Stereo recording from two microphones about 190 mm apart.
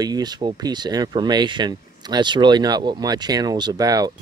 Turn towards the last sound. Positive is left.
turn(degrees=-20)  # may be behind; listen again after turning